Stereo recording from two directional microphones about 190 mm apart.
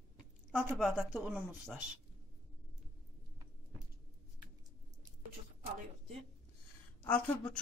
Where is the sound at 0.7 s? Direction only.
5° right (ahead or behind).